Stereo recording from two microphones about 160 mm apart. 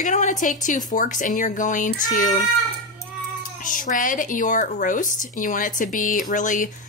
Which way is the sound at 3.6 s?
55° left (ahead or behind).